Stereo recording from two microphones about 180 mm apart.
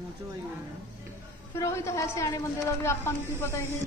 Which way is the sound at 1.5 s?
15° left (ahead or behind).